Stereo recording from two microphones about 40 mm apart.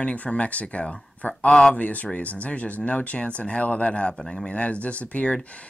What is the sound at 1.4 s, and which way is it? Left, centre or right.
Speech, centre.